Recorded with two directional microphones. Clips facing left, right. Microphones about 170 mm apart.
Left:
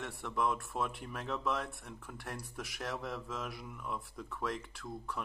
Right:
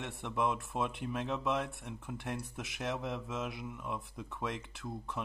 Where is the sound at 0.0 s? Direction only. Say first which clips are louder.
Right 1 dB; 20° right (ahead or behind).